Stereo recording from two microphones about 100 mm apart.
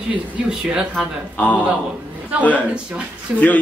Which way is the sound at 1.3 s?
15° left (ahead or behind).